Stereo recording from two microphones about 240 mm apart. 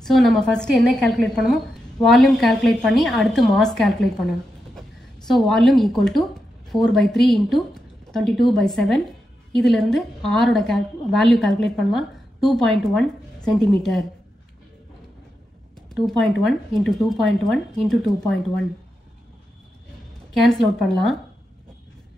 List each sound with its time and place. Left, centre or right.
0.0 s a woman's voice: centre
15.9 s a woman's voice: centre
20.3 s a woman's voice: centre